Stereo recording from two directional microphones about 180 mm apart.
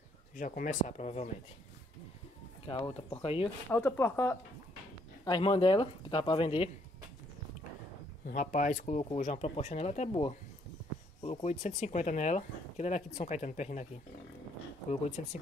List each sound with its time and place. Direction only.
0.4 s speech: 45° left (ahead or behind)
2.7 s speech: 25° left (ahead or behind)
3.7 s speech: 10° left (ahead or behind)
5.2 s speech: 25° left (ahead or behind)
8.3 s speech: 45° left (ahead or behind)
14.9 s speech: 35° left (ahead or behind)